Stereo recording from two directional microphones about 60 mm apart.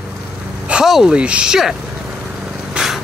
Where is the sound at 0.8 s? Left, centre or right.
Centre.